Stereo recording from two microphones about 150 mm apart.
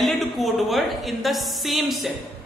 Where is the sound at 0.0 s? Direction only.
Centre (ahead or behind).